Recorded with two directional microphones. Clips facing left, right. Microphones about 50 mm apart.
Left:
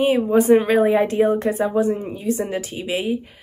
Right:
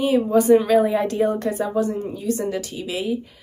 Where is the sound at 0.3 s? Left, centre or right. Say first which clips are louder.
Right 1 dB; left.